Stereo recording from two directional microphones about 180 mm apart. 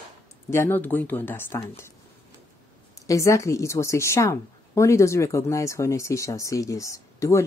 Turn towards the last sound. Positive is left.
turn(degrees=15)  # may be behind; listen again after turning